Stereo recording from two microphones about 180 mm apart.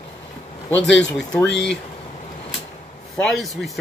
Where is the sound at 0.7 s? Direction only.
90° left.